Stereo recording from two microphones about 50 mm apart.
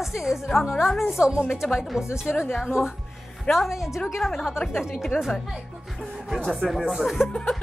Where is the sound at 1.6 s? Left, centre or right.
Centre.